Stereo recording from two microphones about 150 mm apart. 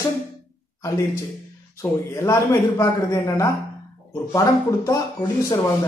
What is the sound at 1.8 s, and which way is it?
A man's voice, 20° left (ahead or behind).